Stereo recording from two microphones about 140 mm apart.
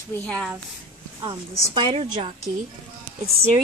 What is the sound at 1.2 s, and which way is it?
A woman's voice, 35° right (ahead or behind).